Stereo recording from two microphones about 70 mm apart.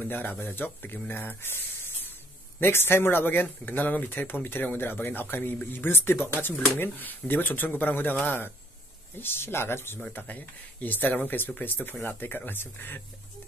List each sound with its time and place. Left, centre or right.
0.0 s speech: left
2.6 s speech: left
10.1 s speech: left